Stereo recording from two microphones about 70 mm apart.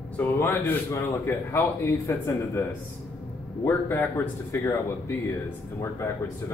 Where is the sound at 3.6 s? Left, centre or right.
Left.